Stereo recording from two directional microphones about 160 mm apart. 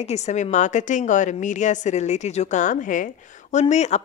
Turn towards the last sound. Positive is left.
turn(degrees=45)  # may be behind; listen again after turning